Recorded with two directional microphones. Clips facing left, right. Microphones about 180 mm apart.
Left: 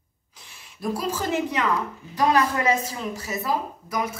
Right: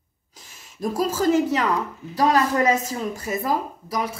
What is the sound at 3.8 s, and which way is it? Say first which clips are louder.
Speech: right 1 dB; 35° right (ahead or behind).